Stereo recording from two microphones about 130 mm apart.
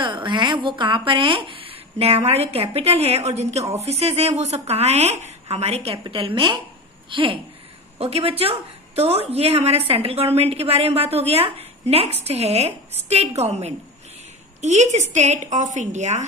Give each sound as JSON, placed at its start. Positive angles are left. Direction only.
{"t": 0.0, "sound": "a woman's voice", "side_deg": -40}
{"t": 6.0, "sound": "a woman's voice", "side_deg": -40}